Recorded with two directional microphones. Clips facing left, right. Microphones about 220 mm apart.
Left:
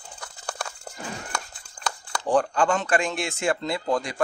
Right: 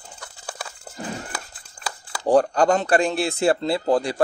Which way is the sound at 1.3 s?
5° right (ahead or behind).